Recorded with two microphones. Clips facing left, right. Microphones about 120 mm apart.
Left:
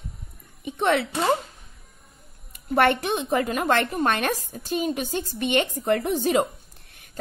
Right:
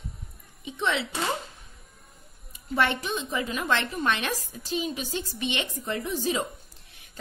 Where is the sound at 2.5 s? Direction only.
55° left (ahead or behind).